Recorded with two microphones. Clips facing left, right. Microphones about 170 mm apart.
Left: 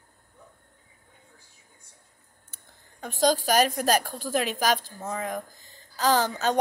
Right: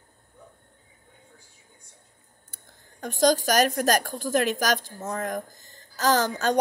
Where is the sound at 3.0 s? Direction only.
45° right (ahead or behind).